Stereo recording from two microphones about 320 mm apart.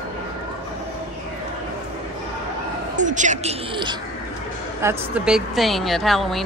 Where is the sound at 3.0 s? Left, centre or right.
Right.